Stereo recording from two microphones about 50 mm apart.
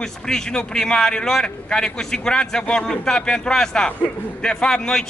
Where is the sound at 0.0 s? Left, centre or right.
Centre.